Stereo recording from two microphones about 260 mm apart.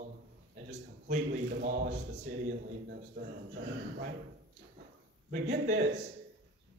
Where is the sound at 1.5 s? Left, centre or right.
Right.